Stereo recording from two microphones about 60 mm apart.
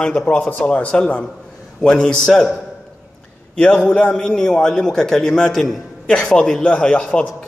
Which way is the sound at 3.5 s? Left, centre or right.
Left.